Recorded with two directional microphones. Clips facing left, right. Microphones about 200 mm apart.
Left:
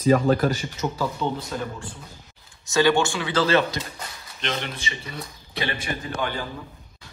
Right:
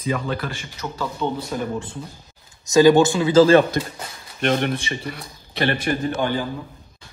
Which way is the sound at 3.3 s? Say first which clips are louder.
Right 8 dB; 50° right (ahead or behind).